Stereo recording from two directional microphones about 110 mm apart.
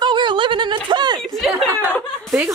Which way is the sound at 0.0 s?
45° right (ahead or behind).